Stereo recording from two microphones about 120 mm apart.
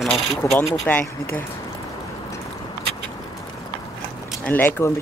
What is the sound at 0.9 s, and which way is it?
Speech, 15° left (ahead or behind).